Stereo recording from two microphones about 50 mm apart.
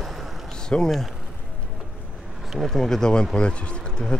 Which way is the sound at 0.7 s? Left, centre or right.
Left.